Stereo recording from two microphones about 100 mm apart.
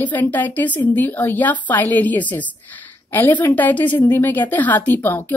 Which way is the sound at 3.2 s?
20° left (ahead or behind).